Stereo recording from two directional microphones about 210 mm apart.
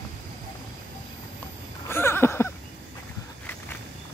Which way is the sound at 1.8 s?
10° left (ahead or behind).